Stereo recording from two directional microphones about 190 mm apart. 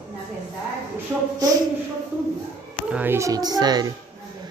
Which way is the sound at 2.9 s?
10° right (ahead or behind).